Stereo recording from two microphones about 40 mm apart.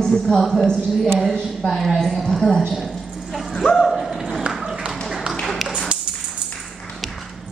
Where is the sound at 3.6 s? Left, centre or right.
Centre.